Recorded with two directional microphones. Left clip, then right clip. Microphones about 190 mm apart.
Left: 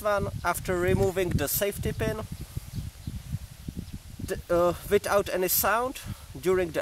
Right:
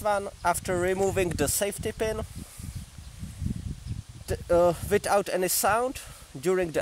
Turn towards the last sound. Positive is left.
turn(degrees=-20)  # may be behind; listen again after turning